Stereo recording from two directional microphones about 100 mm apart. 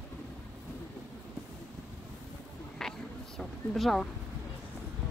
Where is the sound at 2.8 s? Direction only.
5° left (ahead or behind).